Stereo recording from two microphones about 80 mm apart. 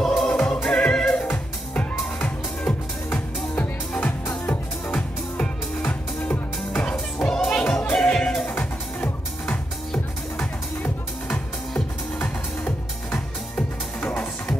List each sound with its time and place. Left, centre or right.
0.0 s music: centre
8.5 s music: left
11.3 s music: centre